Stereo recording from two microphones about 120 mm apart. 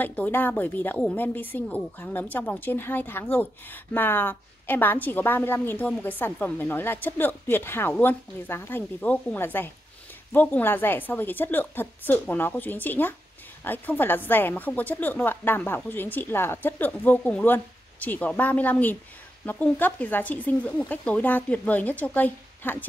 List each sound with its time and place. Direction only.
0.0 s speech: 15° left (ahead or behind)